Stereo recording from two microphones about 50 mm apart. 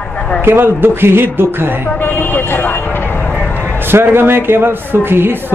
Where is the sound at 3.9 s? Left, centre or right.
Right.